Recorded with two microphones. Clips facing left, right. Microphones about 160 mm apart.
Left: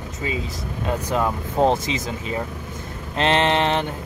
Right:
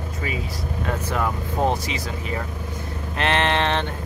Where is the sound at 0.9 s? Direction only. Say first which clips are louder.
Left 3 dB; 20° left (ahead or behind).